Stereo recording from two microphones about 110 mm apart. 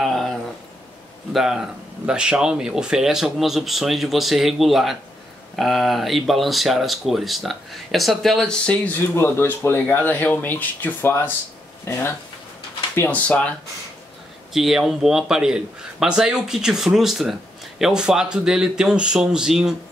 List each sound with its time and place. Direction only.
0.0 s a sound: centre (ahead or behind)
1.3 s a man's voice: 5° right (ahead or behind)
9.1 s speech: 20° left (ahead or behind)
14.5 s a man's voice: centre (ahead or behind)